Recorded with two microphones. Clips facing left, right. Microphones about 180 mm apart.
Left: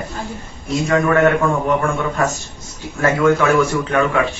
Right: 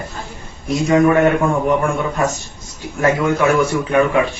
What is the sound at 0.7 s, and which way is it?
A man's voice, 15° right (ahead or behind).